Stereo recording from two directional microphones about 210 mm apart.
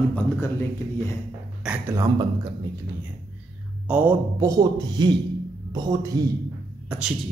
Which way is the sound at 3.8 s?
5° right (ahead or behind).